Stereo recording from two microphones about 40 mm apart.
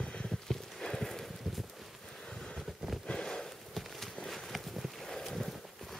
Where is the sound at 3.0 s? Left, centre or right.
Centre.